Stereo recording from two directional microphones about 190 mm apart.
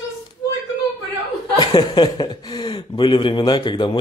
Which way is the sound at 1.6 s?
25° left (ahead or behind).